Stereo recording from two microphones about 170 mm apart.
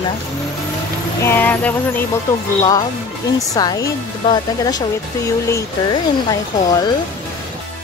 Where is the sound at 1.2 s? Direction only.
15° left (ahead or behind).